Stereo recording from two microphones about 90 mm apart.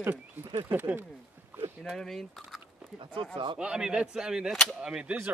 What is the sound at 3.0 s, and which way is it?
Speech, 70° right (ahead or behind).